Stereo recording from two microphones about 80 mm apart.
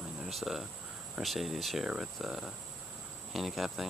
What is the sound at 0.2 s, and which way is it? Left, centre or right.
Speech, centre.